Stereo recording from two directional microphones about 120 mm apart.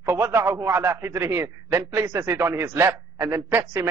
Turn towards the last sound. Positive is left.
turn(degrees=-20)  # may be behind; listen again after turning